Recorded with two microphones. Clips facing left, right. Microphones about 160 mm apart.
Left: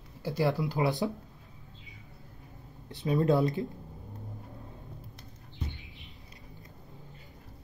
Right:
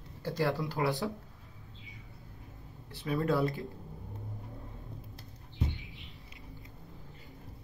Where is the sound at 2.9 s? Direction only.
20° left (ahead or behind).